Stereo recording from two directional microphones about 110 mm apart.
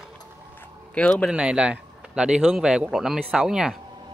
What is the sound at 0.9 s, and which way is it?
Speech, 10° left (ahead or behind).